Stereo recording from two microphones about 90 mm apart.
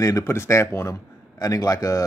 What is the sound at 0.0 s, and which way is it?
Speech, 35° left (ahead or behind).